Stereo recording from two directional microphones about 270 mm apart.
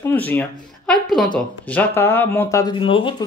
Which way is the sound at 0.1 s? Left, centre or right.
Centre.